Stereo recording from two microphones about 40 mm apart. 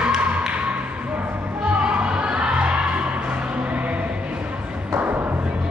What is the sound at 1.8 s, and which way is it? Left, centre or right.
Music, right.